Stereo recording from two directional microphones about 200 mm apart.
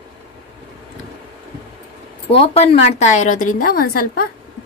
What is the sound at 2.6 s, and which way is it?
Speech, 35° left (ahead or behind).